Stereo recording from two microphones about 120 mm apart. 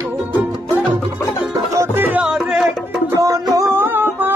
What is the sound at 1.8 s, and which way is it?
Music, 15° right (ahead or behind).